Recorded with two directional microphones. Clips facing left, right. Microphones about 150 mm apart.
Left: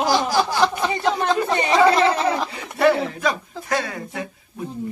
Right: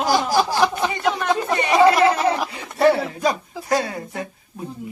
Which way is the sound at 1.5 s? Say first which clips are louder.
Even; 25° left (ahead or behind).